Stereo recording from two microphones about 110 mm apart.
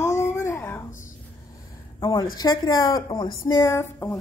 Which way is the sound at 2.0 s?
40° left (ahead or behind).